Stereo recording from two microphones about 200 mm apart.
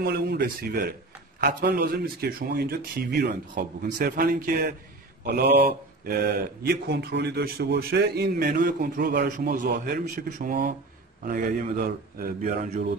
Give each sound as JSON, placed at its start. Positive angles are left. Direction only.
{"t": 0.0, "sound": "speech", "side_deg": -50}